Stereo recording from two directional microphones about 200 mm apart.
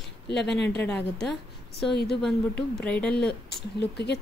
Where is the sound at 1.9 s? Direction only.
55° left (ahead or behind).